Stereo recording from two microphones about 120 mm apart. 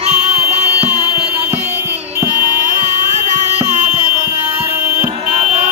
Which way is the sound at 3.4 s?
65° right (ahead or behind).